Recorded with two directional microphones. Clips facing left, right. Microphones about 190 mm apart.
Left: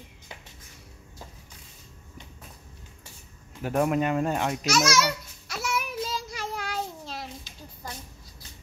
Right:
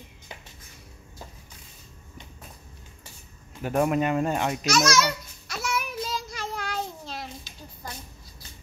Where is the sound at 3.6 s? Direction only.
Centre (ahead or behind).